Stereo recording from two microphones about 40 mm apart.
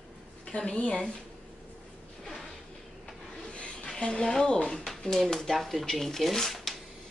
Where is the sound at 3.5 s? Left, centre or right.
Left.